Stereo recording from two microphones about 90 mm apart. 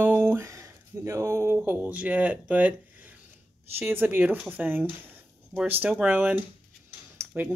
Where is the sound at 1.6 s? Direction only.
20° right (ahead or behind).